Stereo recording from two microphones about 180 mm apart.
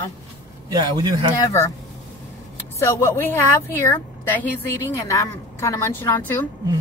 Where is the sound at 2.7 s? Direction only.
15° left (ahead or behind).